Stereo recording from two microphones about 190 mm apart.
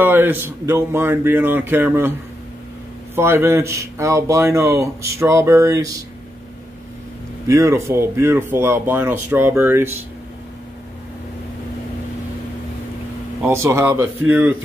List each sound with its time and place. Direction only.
0.0 s speech: 10° right (ahead or behind)
3.2 s speech: 15° right (ahead or behind)
7.4 s speech: 15° right (ahead or behind)
13.4 s speech: 15° right (ahead or behind)